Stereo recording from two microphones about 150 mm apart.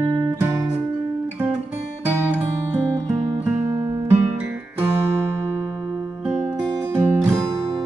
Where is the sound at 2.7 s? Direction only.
20° right (ahead or behind).